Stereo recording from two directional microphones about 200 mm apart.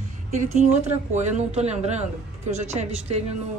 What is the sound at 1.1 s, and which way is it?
A woman's voice, 35° right (ahead or behind).